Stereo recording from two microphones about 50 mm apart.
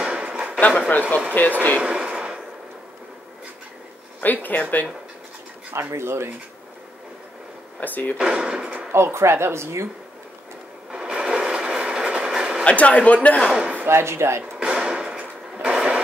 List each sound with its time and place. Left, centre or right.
0.0 s a sound: right
0.6 s speech: left
1.8 s a sound: right
4.2 s speech: left
5.7 s speech: right
7.8 s speech: left
8.2 s speech: centre
8.9 s speech: right
10.9 s sewing machine: centre
12.6 s speech: left
13.8 s speech: right
14.6 s a sound: centre